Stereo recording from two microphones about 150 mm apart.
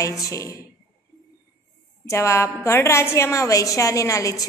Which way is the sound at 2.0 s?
20° left (ahead or behind).